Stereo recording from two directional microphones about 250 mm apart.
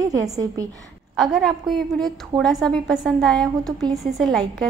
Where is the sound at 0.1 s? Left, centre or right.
Centre.